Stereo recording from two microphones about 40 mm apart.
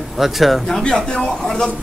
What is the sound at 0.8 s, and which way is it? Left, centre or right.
Speech, left.